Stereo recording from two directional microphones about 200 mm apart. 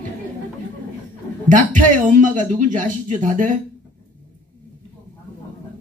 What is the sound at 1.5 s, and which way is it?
Speech, 40° right (ahead or behind).